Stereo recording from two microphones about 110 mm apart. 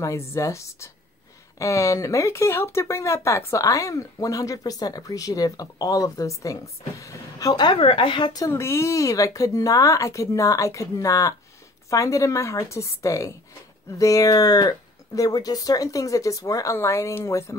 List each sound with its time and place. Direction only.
0.0 s speech: 25° left (ahead or behind)
8.5 s speech: 25° left (ahead or behind)